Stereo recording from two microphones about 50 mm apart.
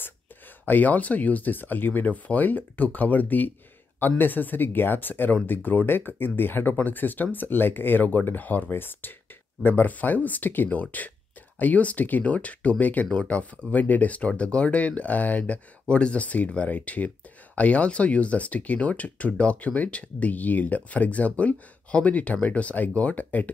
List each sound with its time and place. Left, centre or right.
0.7 s speech: left